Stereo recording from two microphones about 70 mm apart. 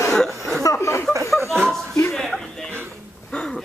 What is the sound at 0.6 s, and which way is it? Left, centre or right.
Speech, left.